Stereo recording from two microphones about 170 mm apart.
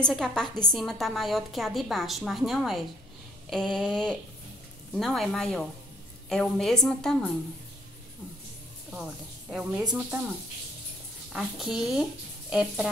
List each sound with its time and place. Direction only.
0.0 s a woman's voice: 5° left (ahead or behind)
8.9 s a woman's voice: 5° right (ahead or behind)
11.3 s a woman's voice: centre (ahead or behind)